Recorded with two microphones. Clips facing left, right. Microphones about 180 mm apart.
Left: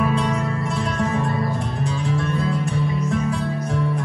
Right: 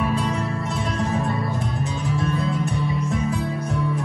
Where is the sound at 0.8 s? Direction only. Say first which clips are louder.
Left 1 dB; 35° right (ahead or behind).